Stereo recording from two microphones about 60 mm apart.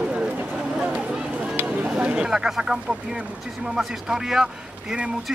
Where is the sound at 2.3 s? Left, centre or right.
Centre.